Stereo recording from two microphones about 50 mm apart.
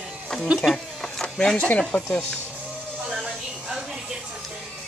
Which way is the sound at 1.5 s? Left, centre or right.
Left.